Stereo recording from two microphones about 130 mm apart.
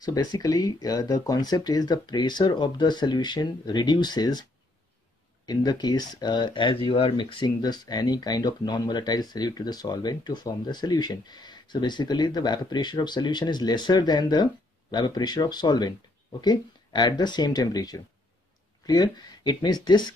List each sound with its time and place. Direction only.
0.0 s speech: 30° left (ahead or behind)
5.5 s speech: 35° left (ahead or behind)